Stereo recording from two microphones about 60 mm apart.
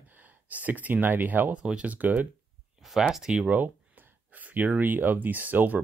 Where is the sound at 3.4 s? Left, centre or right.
Right.